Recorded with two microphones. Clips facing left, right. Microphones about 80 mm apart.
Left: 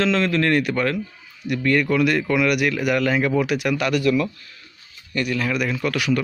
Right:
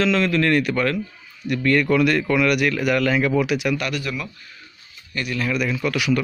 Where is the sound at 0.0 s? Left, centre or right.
Left.